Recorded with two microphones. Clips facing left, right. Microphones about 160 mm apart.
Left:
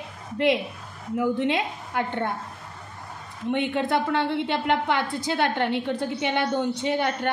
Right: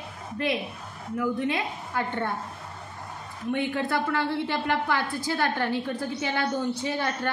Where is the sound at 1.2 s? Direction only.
25° left (ahead or behind).